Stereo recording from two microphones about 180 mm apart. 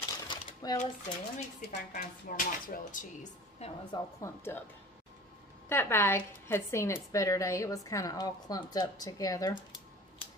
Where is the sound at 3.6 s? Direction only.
35° left (ahead or behind).